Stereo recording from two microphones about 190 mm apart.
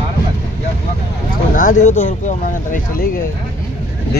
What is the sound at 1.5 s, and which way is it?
Speech, 45° left (ahead or behind).